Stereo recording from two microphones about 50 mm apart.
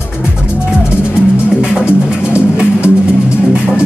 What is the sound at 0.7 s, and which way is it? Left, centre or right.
Music, right.